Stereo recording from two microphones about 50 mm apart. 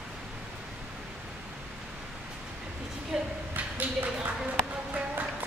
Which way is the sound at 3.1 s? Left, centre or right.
Centre.